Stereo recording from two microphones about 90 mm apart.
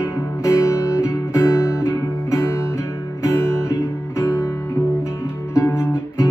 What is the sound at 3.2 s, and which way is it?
Music, 30° left (ahead or behind).